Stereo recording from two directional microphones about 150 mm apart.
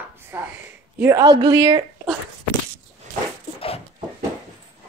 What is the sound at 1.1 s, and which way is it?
Speech, 25° right (ahead or behind).